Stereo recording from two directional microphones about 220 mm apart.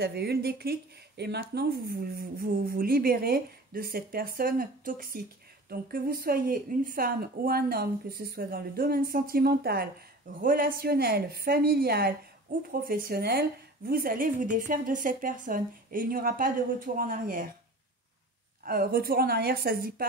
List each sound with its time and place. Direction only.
0.0 s a woman's voice: 45° right (ahead or behind)
18.6 s speech: 40° right (ahead or behind)